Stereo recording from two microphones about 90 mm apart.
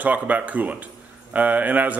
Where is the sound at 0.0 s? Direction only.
15° right (ahead or behind).